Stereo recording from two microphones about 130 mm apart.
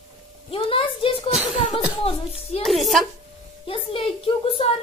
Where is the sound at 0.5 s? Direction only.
45° left (ahead or behind).